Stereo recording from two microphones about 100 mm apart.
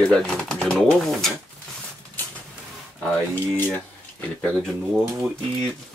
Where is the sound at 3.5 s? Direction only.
15° left (ahead or behind).